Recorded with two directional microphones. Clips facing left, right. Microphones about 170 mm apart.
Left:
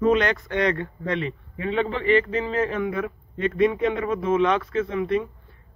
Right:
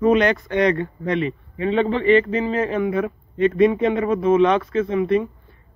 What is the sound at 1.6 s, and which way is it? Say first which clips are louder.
A man's voice: right 5 dB; 25° right (ahead or behind).